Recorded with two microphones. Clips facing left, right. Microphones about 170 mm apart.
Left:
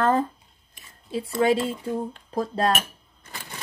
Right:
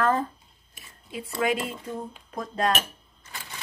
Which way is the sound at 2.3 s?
30° left (ahead or behind).